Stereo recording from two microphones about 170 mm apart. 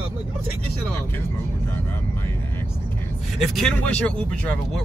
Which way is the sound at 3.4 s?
Centre (ahead or behind).